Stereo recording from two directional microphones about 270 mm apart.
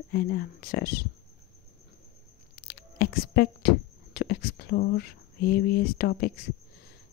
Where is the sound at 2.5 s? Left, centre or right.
Left.